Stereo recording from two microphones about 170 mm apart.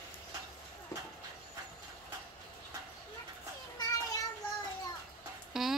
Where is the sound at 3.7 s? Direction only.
20° left (ahead or behind).